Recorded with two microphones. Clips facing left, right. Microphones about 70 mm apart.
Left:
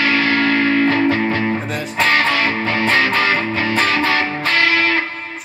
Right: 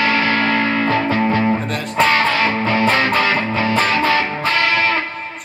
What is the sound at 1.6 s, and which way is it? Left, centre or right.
Music, centre.